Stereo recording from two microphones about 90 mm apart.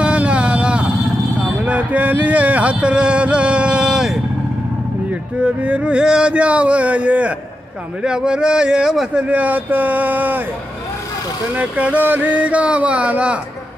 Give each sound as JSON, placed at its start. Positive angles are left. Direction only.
{"t": 0.0, "sound": "vehicle", "side_deg": -15}
{"t": 1.6, "sound": "speech", "side_deg": -15}
{"t": 5.4, "sound": "speech", "side_deg": -15}
{"t": 11.5, "sound": "speech", "side_deg": -15}